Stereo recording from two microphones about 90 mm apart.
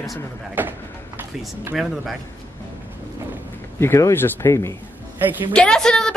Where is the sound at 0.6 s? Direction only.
20° right (ahead or behind).